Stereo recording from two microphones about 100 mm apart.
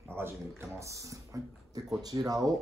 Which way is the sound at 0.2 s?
25° right (ahead or behind).